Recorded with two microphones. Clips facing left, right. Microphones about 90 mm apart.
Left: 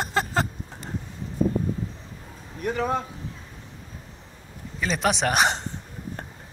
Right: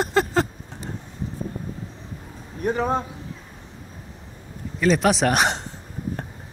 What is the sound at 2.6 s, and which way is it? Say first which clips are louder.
Speech: right 3 dB; 35° right (ahead or behind).